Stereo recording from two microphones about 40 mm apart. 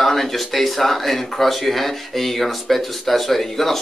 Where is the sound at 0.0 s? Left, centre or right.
Centre.